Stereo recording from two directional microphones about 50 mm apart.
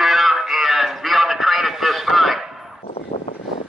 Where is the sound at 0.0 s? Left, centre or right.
Centre.